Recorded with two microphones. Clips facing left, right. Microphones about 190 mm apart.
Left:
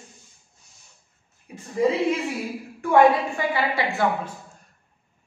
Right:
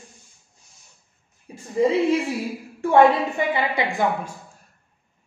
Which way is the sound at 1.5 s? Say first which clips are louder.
Even; 30° right (ahead or behind).